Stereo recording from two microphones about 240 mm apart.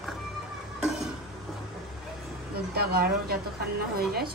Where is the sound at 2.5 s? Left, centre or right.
Right.